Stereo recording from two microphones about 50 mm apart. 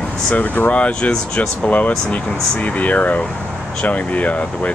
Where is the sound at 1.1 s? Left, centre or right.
Centre.